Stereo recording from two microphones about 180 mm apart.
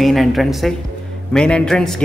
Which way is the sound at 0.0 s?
Centre (ahead or behind).